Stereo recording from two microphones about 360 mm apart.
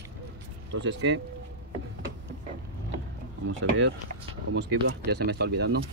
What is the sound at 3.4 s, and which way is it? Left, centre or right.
Speech, right.